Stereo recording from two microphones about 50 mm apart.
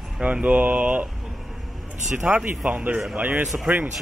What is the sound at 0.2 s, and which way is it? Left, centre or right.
Speech, right.